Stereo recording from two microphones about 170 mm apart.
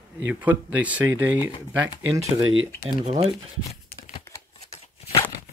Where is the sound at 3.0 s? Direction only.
40° right (ahead or behind).